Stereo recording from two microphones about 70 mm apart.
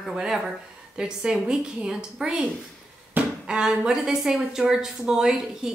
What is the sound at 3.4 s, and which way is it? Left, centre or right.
Speech, centre.